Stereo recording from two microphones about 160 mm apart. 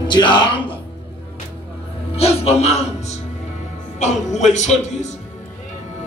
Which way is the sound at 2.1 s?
40° left (ahead or behind).